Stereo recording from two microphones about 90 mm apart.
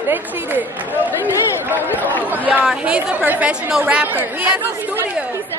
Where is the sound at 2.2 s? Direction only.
20° right (ahead or behind).